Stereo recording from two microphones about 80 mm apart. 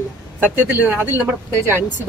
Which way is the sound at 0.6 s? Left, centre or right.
Right.